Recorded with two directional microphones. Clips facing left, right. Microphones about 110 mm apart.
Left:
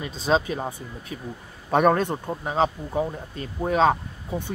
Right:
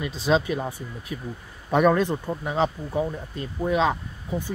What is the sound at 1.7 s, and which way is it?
Speech, 50° left (ahead or behind).